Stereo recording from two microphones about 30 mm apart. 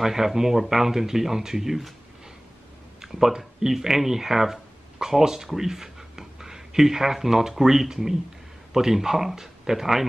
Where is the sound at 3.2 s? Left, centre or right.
Centre.